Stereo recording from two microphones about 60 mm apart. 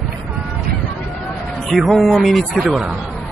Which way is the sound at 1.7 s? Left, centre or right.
Centre.